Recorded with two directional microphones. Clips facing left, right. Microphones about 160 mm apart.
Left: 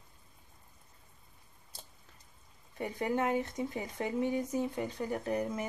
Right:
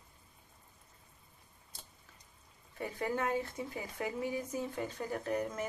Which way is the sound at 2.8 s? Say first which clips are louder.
Left 3 dB; 20° left (ahead or behind).